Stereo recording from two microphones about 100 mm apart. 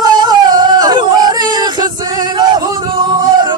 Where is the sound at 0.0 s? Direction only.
45° right (ahead or behind).